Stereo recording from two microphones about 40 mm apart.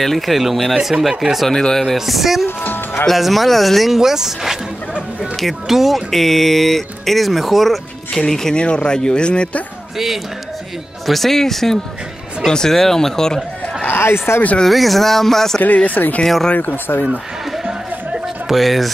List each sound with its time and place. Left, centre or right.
0.0 s speech: centre
1.5 s speech: centre
2.0 s speech: centre
2.4 s speech: left
3.1 s speech: centre
8.2 s speech: centre
8.5 s speech: left
11.1 s speech: centre
13.8 s speech: left
14.7 s speech: centre
15.6 s speech: left
16.5 s speech: left
18.5 s speech: centre